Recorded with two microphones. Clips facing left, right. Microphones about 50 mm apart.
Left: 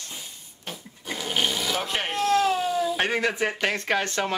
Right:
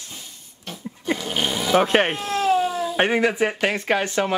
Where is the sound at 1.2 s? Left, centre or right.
Centre.